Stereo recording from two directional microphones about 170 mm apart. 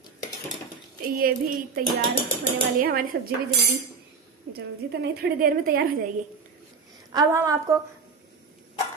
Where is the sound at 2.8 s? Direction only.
60° right (ahead or behind).